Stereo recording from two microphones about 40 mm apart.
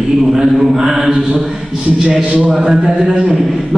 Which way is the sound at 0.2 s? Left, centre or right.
Centre.